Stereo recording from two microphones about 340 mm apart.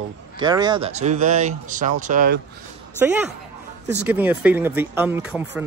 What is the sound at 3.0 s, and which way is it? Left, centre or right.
Speech, centre.